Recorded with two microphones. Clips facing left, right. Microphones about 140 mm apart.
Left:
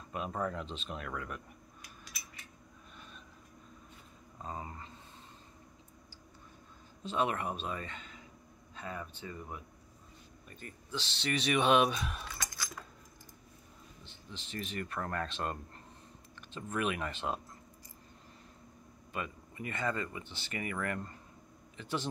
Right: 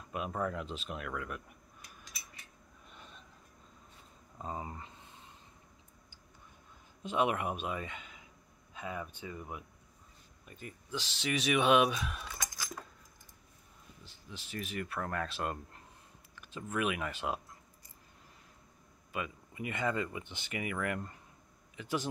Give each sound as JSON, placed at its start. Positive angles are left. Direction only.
{"t": 0.1, "sound": "speech", "side_deg": -5}
{"t": 4.4, "sound": "speech", "side_deg": -15}
{"t": 7.0, "sound": "speech", "side_deg": -15}
{"t": 14.0, "sound": "speech", "side_deg": -10}
{"t": 19.1, "sound": "speech", "side_deg": -10}